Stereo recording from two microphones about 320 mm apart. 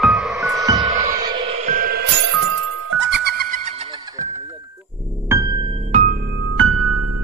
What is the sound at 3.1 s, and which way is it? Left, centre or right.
Music, right.